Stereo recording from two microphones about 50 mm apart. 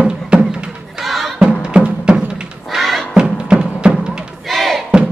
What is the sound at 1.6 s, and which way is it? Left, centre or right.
Music, right.